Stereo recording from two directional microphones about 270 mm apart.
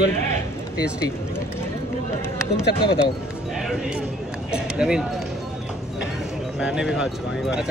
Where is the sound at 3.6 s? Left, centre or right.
Centre.